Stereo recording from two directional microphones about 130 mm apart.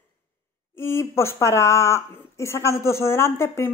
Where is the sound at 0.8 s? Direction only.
20° left (ahead or behind).